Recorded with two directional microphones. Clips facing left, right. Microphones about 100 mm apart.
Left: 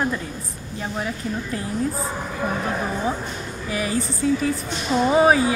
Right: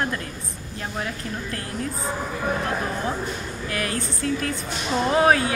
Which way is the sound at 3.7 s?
5° left (ahead or behind).